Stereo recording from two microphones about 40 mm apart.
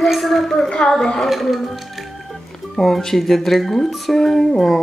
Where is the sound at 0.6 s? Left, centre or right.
Centre.